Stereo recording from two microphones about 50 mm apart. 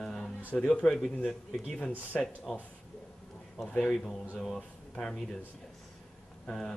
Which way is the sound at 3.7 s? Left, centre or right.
Centre.